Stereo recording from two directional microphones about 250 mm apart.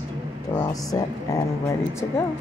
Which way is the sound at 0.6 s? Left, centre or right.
Centre.